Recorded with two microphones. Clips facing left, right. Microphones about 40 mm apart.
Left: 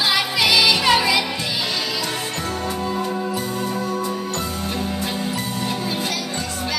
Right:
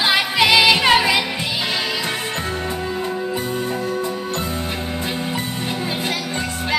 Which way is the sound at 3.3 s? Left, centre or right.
Right.